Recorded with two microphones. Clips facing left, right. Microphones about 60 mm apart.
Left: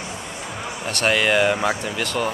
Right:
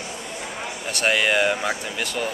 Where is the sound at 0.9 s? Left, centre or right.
Centre.